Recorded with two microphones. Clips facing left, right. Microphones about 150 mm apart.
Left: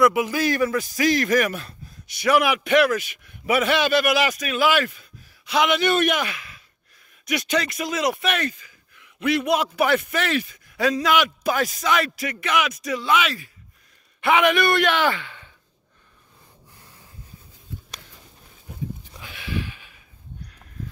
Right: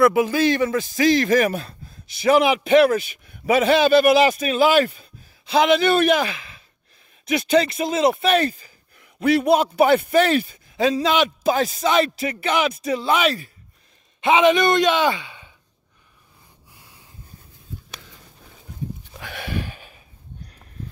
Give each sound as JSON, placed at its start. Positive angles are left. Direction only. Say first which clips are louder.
{"t": 0.0, "sound": "speech", "louder": "right 3 dB", "side_deg": -30}
{"t": 14.2, "sound": "speech", "louder": "right 3 dB", "side_deg": -20}
{"t": 19.3, "sound": "a sound", "louder": "right 1 dB", "side_deg": -45}